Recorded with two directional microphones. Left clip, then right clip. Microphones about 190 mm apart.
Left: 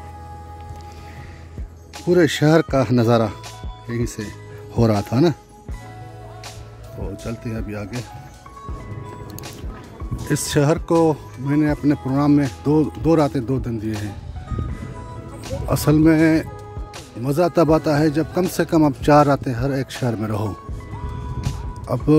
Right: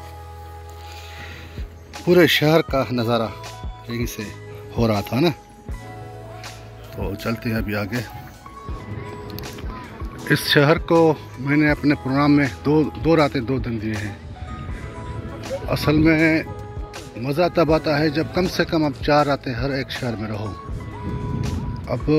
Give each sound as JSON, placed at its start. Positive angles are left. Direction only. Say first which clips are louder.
{"t": 2.0, "sound": "a man's voice", "louder": "right 1 dB", "side_deg": 30}
{"t": 7.0, "sound": "speech", "louder": "right 4 dB", "side_deg": 5}
{"t": 10.2, "sound": "speech", "louder": "right 3 dB", "side_deg": 25}
{"t": 15.0, "sound": "music", "louder": "right 2 dB", "side_deg": 5}
{"t": 15.7, "sound": "a man's voice", "louder": "left 2 dB", "side_deg": 40}
{"t": 20.1, "sound": "a man's voice", "louder": "left 4 dB", "side_deg": 50}
{"t": 21.4, "sound": "music", "louder": "right 3 dB", "side_deg": 5}
{"t": 21.8, "sound": "speech", "louder": "left 3 dB", "side_deg": 50}